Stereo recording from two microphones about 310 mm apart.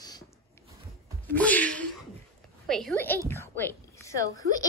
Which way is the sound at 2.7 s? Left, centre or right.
Centre.